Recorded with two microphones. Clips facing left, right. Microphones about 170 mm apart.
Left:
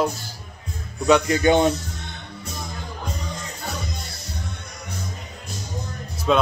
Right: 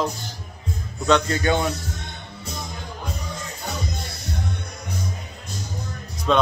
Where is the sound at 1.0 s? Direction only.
15° left (ahead or behind).